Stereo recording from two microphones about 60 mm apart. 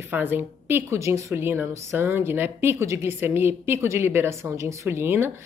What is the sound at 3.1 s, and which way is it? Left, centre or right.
A woman's voice, right.